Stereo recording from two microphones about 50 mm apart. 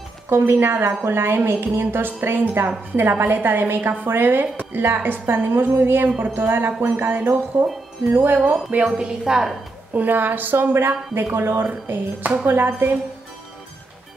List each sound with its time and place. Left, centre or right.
0.5 s a woman's voice: right
7.5 s a woman's voice: right
8.7 s a woman's voice: right
9.9 s a woman's voice: right